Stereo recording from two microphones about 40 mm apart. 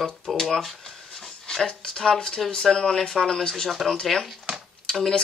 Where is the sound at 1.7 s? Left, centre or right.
Centre.